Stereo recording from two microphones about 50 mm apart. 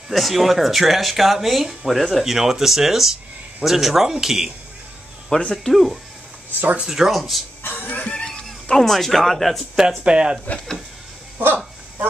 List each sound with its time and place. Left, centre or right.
0.1 s speech: centre
5.3 s speech: centre
5.7 s speech: centre
7.6 s music: left
8.1 s cat: centre
8.6 s speech: centre
9.8 s speech: centre
11.3 s dog: right